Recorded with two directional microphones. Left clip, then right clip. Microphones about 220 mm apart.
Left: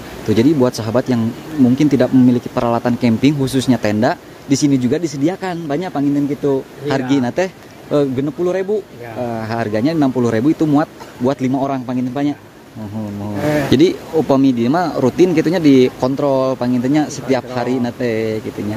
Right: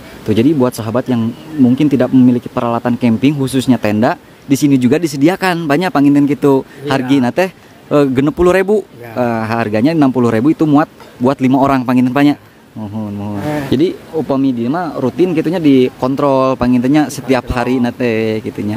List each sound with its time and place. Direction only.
0.3 s speech: 10° right (ahead or behind); by 6.6 s 30° right (ahead or behind)
6.9 s speech: 15° right (ahead or behind)
9.2 s speech: 20° right (ahead or behind)
13.7 s speech: centre (ahead or behind)
16.2 s speech: 20° right (ahead or behind)